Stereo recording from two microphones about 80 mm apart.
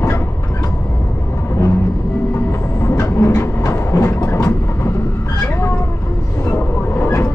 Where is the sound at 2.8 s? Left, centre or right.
Left.